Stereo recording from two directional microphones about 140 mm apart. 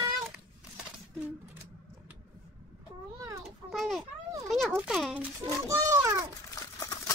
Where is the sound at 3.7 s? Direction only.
Centre (ahead or behind).